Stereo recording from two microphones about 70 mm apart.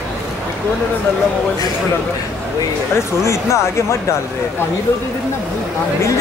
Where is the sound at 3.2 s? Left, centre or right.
Left.